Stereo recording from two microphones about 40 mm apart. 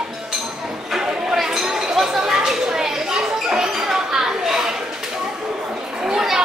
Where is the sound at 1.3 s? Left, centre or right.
Centre.